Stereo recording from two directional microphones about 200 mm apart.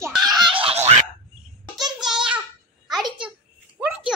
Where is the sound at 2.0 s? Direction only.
5° right (ahead or behind).